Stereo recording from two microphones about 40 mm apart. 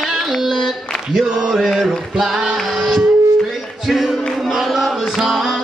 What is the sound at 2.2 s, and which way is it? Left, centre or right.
Music, centre.